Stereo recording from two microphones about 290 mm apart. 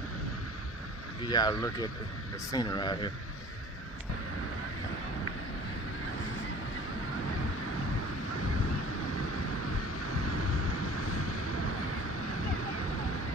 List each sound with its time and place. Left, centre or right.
1.3 s speech: centre
10.1 s vehicle: left